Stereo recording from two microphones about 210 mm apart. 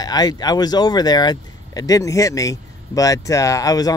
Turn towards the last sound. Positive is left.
turn(degrees=15)  # may be behind; listen again after turning